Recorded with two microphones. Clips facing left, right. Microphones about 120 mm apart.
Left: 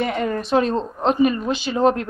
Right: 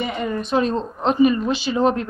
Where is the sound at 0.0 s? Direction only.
60° left (ahead or behind).